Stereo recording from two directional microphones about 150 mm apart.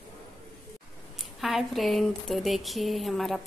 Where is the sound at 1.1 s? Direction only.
Centre (ahead or behind).